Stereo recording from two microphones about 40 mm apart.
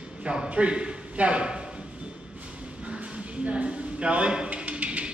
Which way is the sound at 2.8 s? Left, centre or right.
Right.